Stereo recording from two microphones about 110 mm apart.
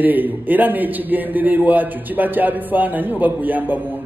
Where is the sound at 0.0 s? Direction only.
15° right (ahead or behind).